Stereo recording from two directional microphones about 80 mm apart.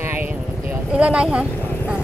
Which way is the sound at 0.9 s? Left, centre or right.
Centre.